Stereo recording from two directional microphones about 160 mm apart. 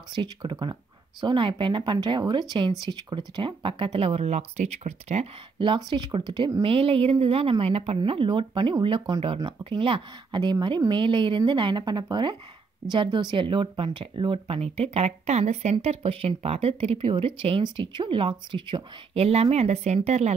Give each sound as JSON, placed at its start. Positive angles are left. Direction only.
{"t": 0.1, "sound": "speech", "side_deg": -30}